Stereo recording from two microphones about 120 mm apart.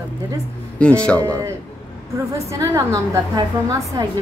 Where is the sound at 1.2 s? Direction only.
25° right (ahead or behind).